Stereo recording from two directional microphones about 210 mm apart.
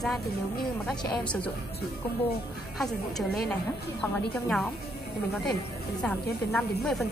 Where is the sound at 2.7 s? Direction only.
Centre (ahead or behind).